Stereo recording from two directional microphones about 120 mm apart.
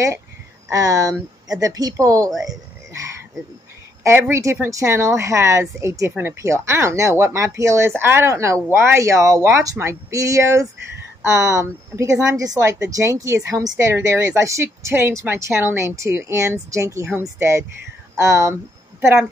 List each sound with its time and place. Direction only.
0.7 s speech: 30° right (ahead or behind)
2.4 s a sound: 25° right (ahead or behind)
4.0 s speech: 20° right (ahead or behind)